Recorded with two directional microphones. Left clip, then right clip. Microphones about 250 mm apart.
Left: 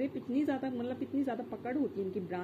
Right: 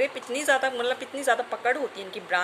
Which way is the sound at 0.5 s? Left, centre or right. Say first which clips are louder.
Right 13 dB; centre.